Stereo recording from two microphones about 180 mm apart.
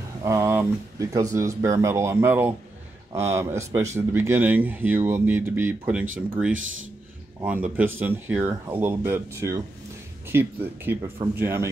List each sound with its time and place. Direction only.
0.2 s speech: 15° right (ahead or behind)
7.4 s speech: 10° right (ahead or behind)